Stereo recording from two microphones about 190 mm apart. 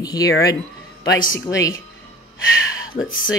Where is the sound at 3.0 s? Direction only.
90° left.